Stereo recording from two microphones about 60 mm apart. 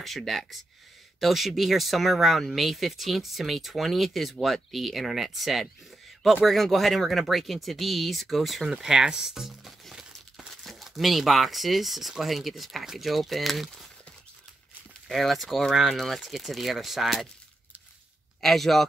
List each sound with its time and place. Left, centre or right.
0.0 s speech: centre
15.0 s speech: centre
18.4 s speech: centre